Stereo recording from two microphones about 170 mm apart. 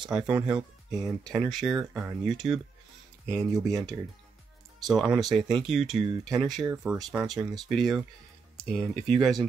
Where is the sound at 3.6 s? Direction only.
20° right (ahead or behind).